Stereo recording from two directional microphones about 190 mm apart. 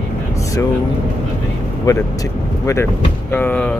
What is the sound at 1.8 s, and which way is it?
Speech, 15° left (ahead or behind).